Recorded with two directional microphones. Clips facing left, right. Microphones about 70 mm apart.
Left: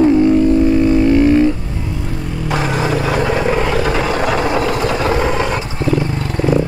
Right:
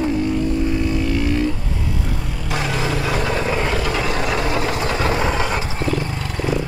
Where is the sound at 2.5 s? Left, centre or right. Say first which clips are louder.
Left 5 dB; left.